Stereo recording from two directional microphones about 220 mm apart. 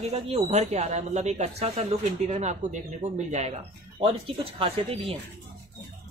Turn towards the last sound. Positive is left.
turn(degrees=-25)  # may be behind; listen again after turning